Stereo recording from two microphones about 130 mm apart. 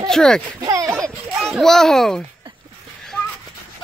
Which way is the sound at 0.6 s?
25° right (ahead or behind).